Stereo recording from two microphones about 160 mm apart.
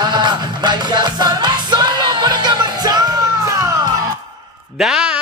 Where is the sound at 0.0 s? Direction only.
25° right (ahead or behind).